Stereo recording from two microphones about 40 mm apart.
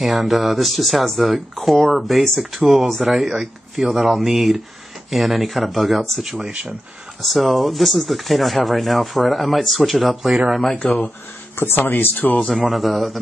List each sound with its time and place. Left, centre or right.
0.0 s speech: centre
6.2 s speech: centre
7.2 s speech: centre
10.8 s speech: left
11.5 s speech: left
12.4 s speech: centre